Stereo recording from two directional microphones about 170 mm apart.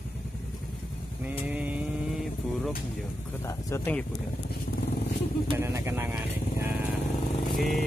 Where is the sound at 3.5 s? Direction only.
15° left (ahead or behind).